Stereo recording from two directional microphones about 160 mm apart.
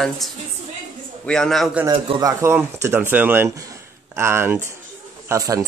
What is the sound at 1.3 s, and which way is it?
Speech, 5° left (ahead or behind).